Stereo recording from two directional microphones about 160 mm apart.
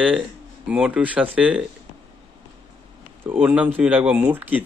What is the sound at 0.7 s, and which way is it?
Speech, 5° right (ahead or behind).